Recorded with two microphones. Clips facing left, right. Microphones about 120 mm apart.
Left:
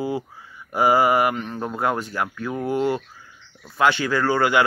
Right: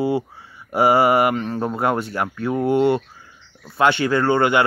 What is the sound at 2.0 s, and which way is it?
Speech, 25° right (ahead or behind).